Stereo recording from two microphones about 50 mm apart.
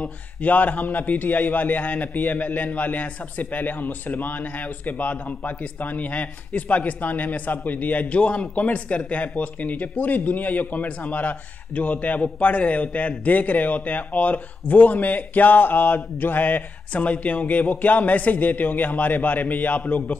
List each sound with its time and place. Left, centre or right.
0.4 s a man's voice: left